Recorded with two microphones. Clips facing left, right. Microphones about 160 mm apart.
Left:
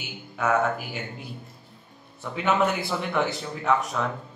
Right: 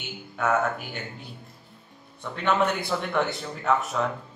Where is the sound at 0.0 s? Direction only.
Centre (ahead or behind).